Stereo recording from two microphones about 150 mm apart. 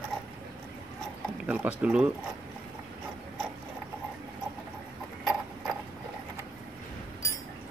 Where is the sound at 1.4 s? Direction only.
10° right (ahead or behind).